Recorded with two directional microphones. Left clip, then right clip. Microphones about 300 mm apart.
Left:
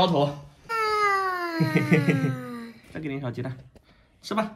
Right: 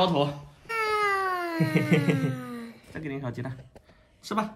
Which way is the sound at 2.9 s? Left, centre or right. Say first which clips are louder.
Left 2 dB; centre.